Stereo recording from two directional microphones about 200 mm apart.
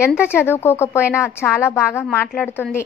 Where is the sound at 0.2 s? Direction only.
10° left (ahead or behind).